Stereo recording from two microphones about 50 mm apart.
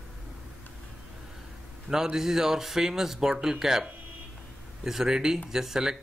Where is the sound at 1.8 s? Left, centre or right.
Centre.